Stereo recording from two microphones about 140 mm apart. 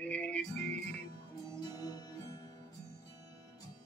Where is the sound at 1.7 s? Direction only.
25° left (ahead or behind).